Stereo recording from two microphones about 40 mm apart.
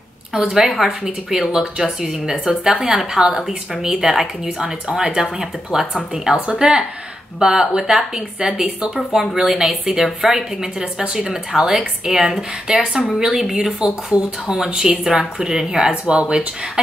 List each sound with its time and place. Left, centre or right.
0.3 s a woman's voice: centre
9.1 s a woman's voice: centre
10.8 s a woman's voice: centre
15.0 s a woman's voice: centre
15.9 s speech: right